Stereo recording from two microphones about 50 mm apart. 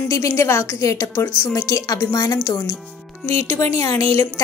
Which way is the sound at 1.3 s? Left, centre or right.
Left.